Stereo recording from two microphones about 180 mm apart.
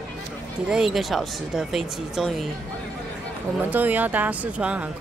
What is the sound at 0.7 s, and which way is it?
Speech, centre (ahead or behind).